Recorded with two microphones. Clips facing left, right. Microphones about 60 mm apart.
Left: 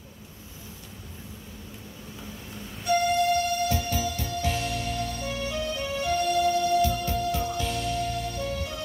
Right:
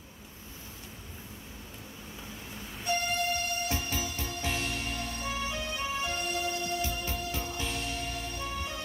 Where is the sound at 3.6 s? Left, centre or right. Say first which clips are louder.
Left 6 dB; right.